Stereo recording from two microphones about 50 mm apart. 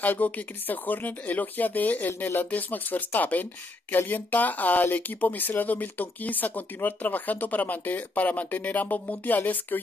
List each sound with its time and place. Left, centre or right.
0.0 s speech: left